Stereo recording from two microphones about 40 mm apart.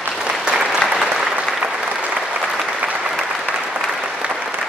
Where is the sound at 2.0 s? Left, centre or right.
Right.